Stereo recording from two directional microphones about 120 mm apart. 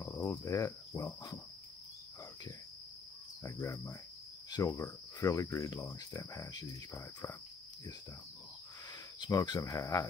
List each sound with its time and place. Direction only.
0.0 s cricket: 25° left (ahead or behind)
3.4 s cricket: 25° left (ahead or behind)
9.2 s cricket: 35° left (ahead or behind)